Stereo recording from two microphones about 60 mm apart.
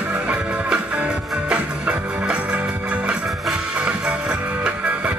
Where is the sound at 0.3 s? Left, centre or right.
Centre.